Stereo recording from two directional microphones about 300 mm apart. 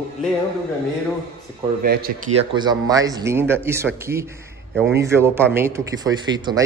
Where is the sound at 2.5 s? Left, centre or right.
Centre.